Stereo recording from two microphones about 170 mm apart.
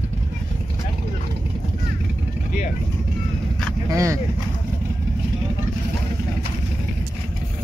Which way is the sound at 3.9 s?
20° right (ahead or behind).